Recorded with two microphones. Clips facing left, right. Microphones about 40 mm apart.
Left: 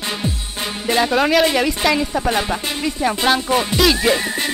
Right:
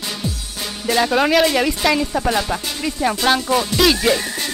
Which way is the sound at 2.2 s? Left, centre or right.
Centre.